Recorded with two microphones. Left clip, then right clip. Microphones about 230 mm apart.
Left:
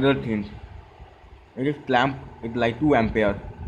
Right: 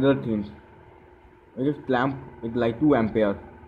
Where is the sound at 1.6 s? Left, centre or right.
Centre.